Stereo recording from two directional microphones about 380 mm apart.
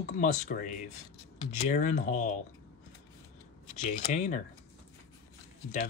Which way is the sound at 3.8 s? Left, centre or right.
Centre.